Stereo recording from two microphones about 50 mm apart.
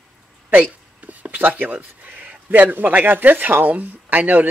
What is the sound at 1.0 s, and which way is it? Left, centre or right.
Whispering, right.